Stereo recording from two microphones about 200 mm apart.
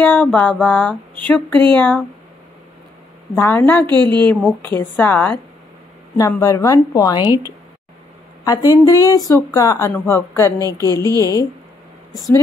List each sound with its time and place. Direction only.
0.0 s speech: 10° left (ahead or behind)
3.3 s speech: 10° left (ahead or behind)
8.5 s speech: 20° left (ahead or behind)